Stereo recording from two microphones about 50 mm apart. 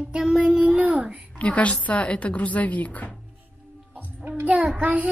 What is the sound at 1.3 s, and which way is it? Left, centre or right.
A woman's voice, left.